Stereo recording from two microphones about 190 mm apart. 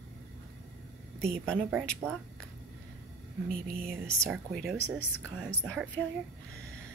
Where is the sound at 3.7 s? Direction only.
50° right (ahead or behind).